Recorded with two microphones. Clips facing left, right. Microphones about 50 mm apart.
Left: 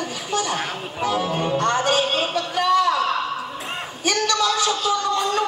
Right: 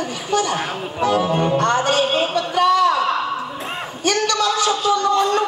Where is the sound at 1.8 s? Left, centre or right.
Centre.